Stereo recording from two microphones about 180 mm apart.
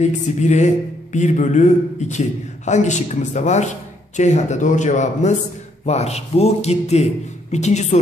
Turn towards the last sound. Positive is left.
turn(degrees=40)  # may be behind; listen again after turning